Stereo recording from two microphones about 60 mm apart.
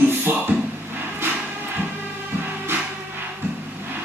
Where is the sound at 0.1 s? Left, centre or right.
Right.